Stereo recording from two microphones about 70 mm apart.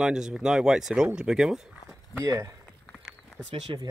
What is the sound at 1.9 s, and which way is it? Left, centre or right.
Walk, right.